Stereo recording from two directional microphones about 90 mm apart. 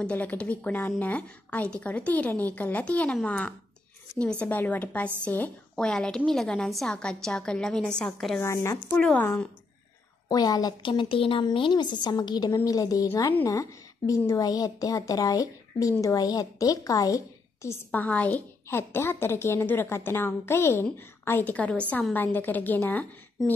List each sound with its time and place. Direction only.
0.0 s a woman's voice: 15° left (ahead or behind)
8.4 s speech: 35° left (ahead or behind)
8.9 s a woman's voice: 15° left (ahead or behind)
10.2 s a woman's voice: 45° left (ahead or behind)
10.8 s speech: 65° left (ahead or behind)
11.5 s a woman's voice: 65° left (ahead or behind); by 17.7 s 35° left (ahead or behind)
17.9 s a woman's voice: 15° left (ahead or behind)